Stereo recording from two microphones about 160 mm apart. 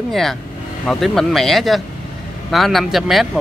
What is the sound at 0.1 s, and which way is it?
Speech, centre (ahead or behind).